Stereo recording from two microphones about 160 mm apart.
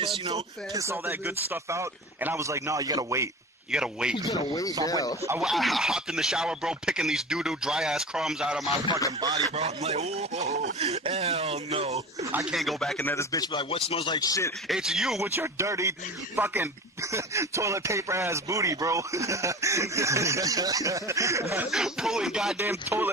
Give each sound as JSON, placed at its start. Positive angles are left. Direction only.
{"t": 0.7, "sound": "speech", "side_deg": -15}
{"t": 3.7, "sound": "speech", "side_deg": -5}
{"t": 4.3, "sound": "a man's voice", "side_deg": 20}
{"t": 5.4, "sound": "speech", "side_deg": 0}
{"t": 9.2, "sound": "speech", "side_deg": -25}
{"t": 9.6, "sound": "speech", "side_deg": -40}
{"t": 12.3, "sound": "speech", "side_deg": -10}
{"t": 12.5, "sound": "speech", "side_deg": 0}
{"t": 13.1, "sound": "a man's voice", "side_deg": 20}
{"t": 14.7, "sound": "speech", "side_deg": -5}
{"t": 15.2, "sound": "speech", "side_deg": -15}
{"t": 21.6, "sound": "speech", "side_deg": -5}